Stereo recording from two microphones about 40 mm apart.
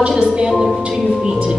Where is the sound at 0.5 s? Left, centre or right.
Centre.